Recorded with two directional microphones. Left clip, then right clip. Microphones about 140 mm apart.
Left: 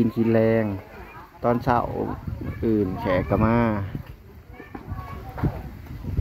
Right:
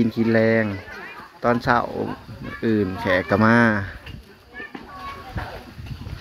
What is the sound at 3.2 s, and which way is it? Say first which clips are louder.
Speech: right 5 dB; 5° left (ahead or behind).